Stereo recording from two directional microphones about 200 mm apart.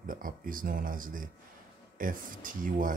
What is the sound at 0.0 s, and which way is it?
Speech, 45° right (ahead or behind).